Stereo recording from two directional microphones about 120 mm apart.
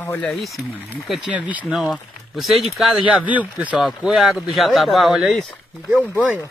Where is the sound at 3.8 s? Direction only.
Centre (ahead or behind).